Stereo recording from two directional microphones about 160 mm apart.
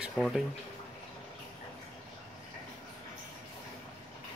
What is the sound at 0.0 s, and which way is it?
Speech, centre (ahead or behind).